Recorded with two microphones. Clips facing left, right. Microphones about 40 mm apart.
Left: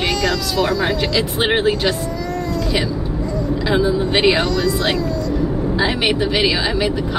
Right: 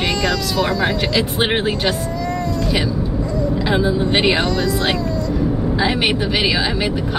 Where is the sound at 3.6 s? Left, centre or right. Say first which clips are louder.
Left 2 dB; centre.